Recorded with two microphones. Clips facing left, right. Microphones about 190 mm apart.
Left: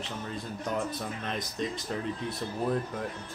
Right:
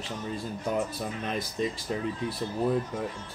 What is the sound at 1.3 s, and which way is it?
Speech, 5° right (ahead or behind).